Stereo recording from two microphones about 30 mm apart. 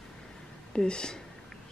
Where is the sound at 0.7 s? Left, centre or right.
Left.